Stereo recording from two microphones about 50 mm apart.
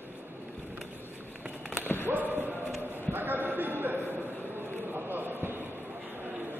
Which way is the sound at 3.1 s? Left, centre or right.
Right.